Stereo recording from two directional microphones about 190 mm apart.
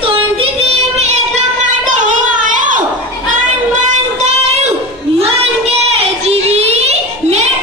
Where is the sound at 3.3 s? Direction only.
40° right (ahead or behind).